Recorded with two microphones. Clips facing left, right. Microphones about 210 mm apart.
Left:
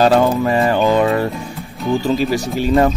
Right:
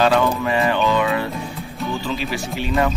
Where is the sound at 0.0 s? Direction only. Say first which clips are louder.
Left 4 dB; 40° left (ahead or behind).